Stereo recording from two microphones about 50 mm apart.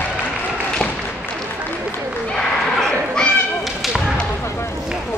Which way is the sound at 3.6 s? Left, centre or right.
Centre.